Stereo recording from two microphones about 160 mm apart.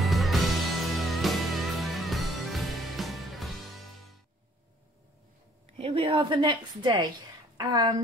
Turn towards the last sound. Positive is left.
turn(degrees=-25)  # may be behind; listen again after turning